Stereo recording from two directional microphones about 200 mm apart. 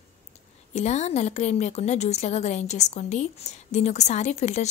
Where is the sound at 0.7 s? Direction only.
35° left (ahead or behind).